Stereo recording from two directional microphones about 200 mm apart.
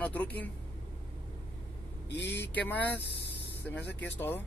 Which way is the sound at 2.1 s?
60° left (ahead or behind).